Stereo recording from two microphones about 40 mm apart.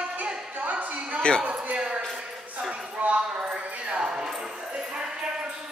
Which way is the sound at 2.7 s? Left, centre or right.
Right.